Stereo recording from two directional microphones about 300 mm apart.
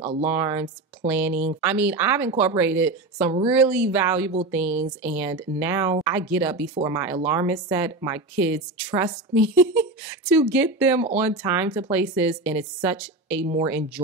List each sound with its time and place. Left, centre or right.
0.0 s speech: right
0.3 s speech: centre